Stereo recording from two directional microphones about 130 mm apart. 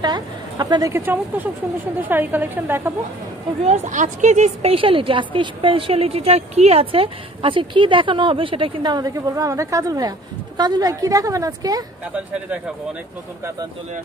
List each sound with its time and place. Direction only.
0.0 s a woman's voice: 35° right (ahead or behind); by 2.9 s 15° right (ahead or behind)
3.6 s a woman's voice: 65° right (ahead or behind); by 11.8 s 25° right (ahead or behind)
12.1 s a woman's voice: 10° right (ahead or behind)